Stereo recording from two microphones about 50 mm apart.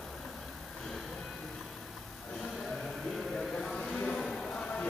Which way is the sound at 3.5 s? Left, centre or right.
Centre.